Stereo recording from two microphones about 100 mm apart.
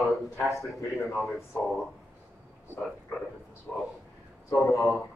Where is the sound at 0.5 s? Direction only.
Centre (ahead or behind).